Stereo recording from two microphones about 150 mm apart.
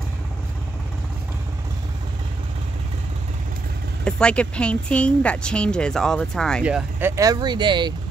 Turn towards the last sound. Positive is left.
turn(degrees=-30)  # may be behind; listen again after turning